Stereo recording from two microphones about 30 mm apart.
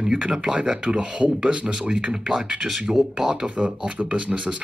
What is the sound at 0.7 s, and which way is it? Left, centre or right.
Speech, right.